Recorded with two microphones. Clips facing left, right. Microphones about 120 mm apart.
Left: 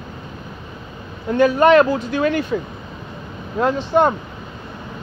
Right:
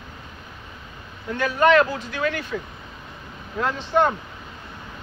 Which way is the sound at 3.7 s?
20° left (ahead or behind).